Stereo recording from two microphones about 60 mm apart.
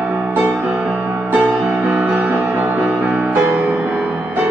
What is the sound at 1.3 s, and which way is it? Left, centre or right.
Music, right.